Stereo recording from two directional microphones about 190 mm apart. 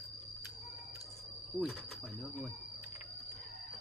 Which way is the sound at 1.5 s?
25° left (ahead or behind).